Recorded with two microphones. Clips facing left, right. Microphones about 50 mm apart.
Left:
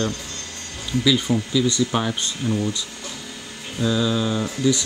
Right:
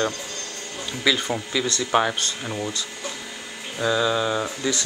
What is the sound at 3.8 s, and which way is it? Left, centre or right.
Mantra, centre.